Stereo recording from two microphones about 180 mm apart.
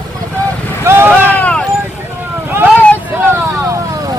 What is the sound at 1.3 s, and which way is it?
Vehicle, 5° left (ahead or behind).